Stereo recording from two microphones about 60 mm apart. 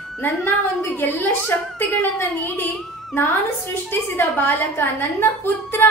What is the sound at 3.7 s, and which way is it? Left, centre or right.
A woman's voice, left.